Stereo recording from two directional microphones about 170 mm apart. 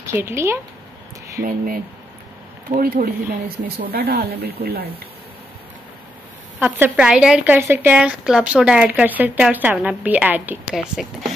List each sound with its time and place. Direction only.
0.0 s speech: 15° right (ahead or behind)
2.8 s speech: 60° right (ahead or behind)
6.6 s speech: 10° right (ahead or behind)